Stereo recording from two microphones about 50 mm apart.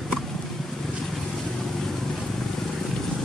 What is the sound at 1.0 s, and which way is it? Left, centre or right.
Vehicle, centre.